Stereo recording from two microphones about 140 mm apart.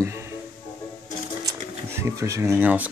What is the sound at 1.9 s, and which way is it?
Speech, 20° right (ahead or behind).